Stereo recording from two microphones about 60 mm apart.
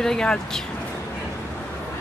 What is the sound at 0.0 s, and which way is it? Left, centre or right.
Speech, centre.